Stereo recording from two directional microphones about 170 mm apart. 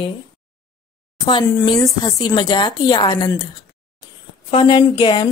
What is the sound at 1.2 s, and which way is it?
Speech, 25° left (ahead or behind).